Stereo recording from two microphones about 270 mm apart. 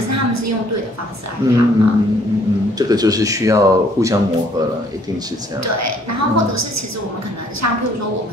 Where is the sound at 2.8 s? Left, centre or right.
Centre.